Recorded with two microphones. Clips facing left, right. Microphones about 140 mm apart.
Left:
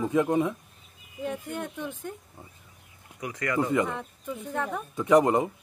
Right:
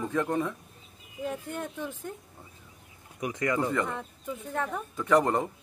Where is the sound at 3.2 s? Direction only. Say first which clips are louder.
Right 2 dB; 20° right (ahead or behind).